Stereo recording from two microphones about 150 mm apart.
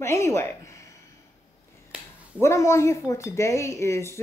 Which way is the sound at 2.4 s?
20° left (ahead or behind).